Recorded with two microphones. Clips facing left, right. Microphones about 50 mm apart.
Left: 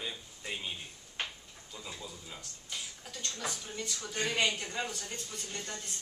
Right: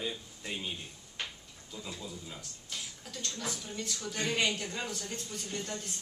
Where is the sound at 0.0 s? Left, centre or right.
Centre.